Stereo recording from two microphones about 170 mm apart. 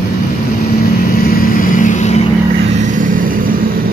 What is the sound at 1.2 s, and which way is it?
Vehicle, 55° left (ahead or behind).